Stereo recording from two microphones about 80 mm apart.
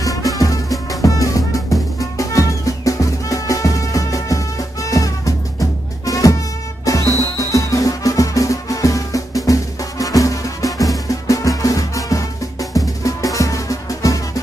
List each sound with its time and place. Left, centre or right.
0.0 s music: left